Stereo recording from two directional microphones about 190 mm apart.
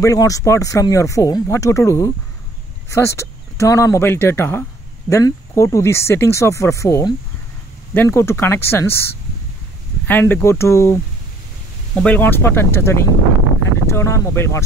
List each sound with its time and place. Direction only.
0.0 s speech: 15° left (ahead or behind)
10.0 s speech: 10° left (ahead or behind)